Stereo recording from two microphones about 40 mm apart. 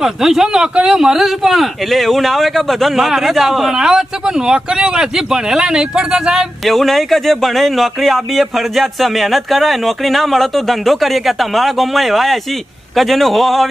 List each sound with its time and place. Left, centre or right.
0.0 s speech: centre
3.7 s speech: centre
6.6 s speech: centre